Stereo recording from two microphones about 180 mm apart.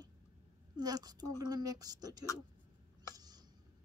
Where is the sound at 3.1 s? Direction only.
20° right (ahead or behind).